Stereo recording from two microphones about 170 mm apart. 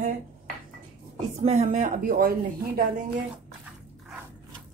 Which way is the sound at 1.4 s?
40° right (ahead or behind).